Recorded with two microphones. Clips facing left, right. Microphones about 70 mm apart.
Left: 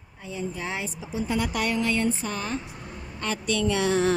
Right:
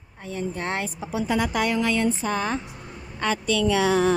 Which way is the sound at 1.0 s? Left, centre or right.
Right.